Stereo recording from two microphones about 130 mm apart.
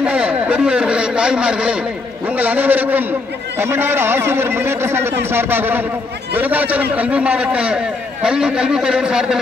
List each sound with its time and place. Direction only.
0.0 s a man's voice: 10° right (ahead or behind)